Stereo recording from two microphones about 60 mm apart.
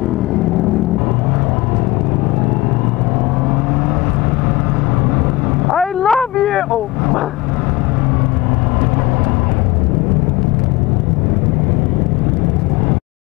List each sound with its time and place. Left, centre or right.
5.7 s boat: centre